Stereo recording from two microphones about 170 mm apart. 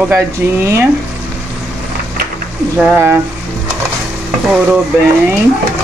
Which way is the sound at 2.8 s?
10° right (ahead or behind).